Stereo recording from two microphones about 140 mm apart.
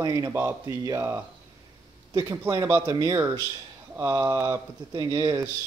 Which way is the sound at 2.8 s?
30° right (ahead or behind).